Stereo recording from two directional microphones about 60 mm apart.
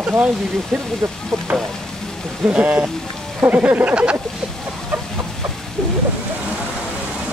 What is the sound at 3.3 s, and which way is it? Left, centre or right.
Speech, right.